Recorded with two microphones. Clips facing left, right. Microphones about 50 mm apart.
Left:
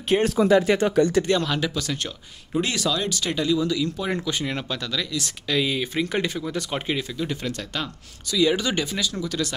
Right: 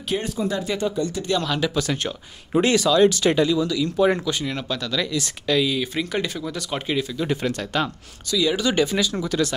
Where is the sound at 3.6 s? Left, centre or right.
Centre.